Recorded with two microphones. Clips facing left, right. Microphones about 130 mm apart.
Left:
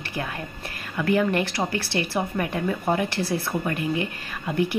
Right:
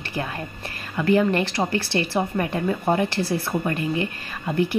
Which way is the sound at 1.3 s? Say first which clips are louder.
Right 2 dB; 10° left (ahead or behind).